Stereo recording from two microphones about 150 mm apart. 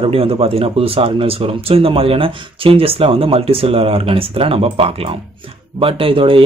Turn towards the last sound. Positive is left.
turn(degrees=-35)  # may be behind; listen again after turning